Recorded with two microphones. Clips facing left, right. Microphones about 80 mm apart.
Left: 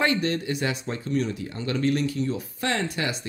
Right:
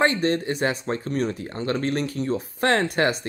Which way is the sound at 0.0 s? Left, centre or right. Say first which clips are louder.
Right 3 dB; right.